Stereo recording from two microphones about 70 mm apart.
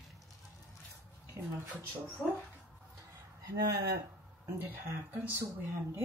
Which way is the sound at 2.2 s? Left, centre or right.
Centre.